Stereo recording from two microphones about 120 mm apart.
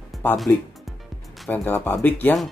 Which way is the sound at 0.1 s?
Centre (ahead or behind).